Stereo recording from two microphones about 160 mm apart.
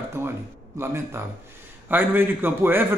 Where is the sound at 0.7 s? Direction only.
15° right (ahead or behind).